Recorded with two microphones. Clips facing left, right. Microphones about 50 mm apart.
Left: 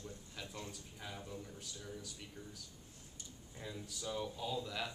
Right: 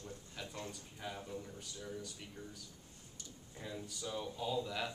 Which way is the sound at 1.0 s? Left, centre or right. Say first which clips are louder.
Right 3 dB; centre.